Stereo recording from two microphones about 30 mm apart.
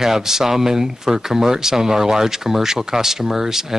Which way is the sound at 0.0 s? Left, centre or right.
Centre.